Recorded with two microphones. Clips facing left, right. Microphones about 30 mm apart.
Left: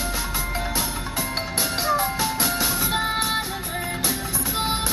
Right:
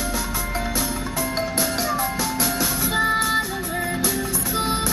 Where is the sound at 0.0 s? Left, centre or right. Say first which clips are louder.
Right 1 dB; left.